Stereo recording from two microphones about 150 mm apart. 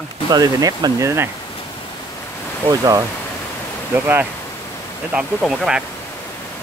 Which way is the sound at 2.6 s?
25° right (ahead or behind).